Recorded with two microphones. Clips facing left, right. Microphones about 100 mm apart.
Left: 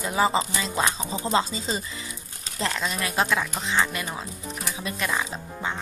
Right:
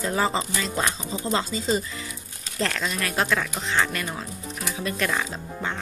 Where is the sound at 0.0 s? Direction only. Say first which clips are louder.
Left 1 dB; 15° left (ahead or behind).